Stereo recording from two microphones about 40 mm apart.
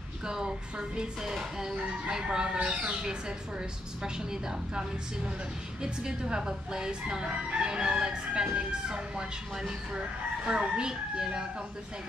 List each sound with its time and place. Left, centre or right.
0.3 s a woman's voice: centre